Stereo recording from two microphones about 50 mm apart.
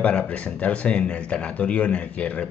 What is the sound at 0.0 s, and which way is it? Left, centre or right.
Speech, left.